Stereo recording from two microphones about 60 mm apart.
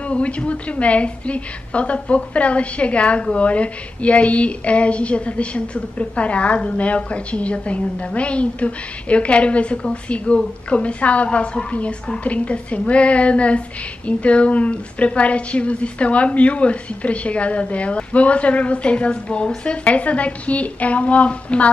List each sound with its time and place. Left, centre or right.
0.0 s a woman's voice: left